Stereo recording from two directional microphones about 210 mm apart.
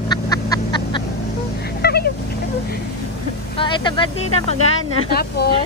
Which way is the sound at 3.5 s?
20° left (ahead or behind).